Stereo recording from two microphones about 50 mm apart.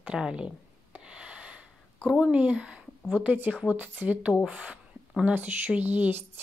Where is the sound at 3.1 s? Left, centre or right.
Right.